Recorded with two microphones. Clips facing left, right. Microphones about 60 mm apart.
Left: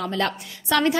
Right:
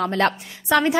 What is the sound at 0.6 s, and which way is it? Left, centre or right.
Speech, centre.